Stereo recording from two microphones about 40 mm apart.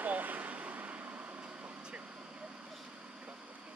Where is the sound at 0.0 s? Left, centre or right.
Right.